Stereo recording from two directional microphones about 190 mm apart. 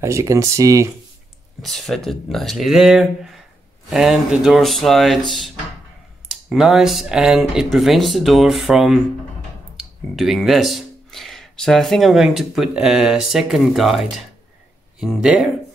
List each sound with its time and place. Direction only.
0.0 s speech: 15° right (ahead or behind)
1.6 s speech: centre (ahead or behind)